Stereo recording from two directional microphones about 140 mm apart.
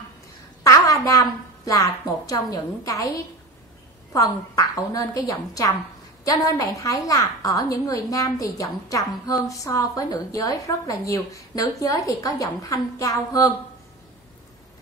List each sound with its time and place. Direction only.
0.7 s a woman's voice: 20° left (ahead or behind)
4.1 s a woman's voice: 25° left (ahead or behind)